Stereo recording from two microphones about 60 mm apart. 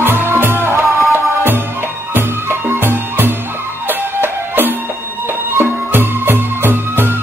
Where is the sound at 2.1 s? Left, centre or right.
Right.